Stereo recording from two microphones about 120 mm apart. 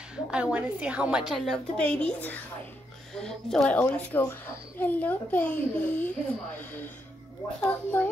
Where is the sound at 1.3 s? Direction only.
5° left (ahead or behind).